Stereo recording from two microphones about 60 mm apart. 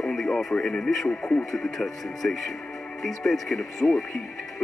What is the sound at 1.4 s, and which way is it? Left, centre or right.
Speech, centre.